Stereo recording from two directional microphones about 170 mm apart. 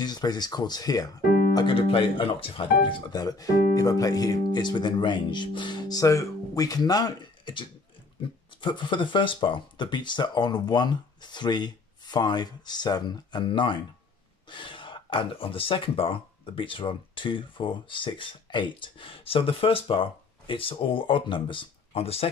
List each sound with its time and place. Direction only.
0.0 s speech: 25° left (ahead or behind)